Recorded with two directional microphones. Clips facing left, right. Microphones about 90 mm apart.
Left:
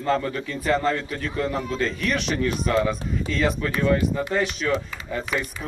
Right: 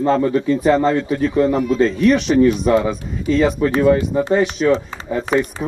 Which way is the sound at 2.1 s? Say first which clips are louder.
Right 13 dB; centre (ahead or behind).